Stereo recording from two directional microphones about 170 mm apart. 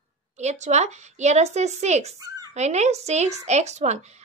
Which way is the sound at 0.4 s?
40° right (ahead or behind).